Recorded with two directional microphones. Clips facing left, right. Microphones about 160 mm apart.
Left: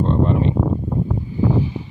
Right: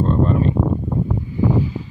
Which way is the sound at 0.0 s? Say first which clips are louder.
Even; 20° left (ahead or behind).